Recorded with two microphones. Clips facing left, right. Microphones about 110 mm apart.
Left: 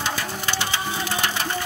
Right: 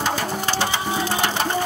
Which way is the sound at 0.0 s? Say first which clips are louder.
Right 4 dB; 40° right (ahead or behind).